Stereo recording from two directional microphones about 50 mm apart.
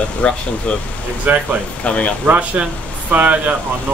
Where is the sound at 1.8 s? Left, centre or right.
Left.